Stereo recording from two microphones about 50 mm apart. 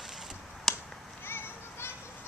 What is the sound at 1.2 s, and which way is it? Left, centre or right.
Children playing, left.